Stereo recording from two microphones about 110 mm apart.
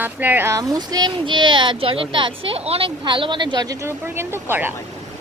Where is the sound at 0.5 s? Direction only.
35° right (ahead or behind); by 2.9 s 60° right (ahead or behind).